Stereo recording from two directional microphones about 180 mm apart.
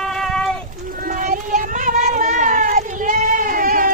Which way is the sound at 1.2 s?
45° right (ahead or behind).